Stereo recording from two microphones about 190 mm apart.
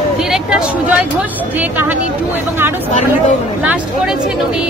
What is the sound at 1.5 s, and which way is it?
Speech, 10° right (ahead or behind).